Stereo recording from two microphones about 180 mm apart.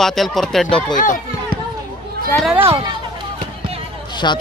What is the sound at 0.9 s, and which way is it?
Speech, 45° left (ahead or behind).